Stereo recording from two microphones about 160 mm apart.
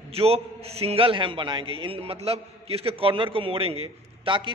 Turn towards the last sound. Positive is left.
turn(degrees=-30)  # may be behind; listen again after turning